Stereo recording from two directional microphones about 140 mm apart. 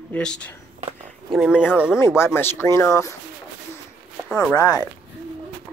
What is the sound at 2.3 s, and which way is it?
Speech, 15° left (ahead or behind).